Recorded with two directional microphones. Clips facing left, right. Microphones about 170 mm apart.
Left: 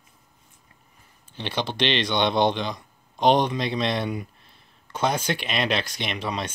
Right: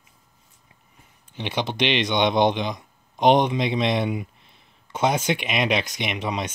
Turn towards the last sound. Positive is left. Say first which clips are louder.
# right 2 dB
turn(degrees=-15)  # may be behind; listen again after turning